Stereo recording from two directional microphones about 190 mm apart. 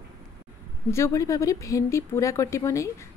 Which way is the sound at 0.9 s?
15° left (ahead or behind).